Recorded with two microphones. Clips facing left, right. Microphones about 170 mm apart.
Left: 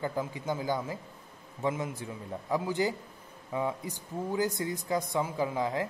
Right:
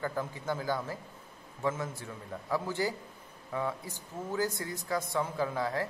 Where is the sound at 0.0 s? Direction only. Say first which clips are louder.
Left 2 dB; 15° left (ahead or behind).